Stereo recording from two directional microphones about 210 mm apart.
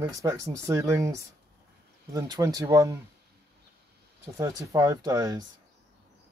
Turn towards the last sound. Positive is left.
turn(degrees=-15)  # may be behind; listen again after turning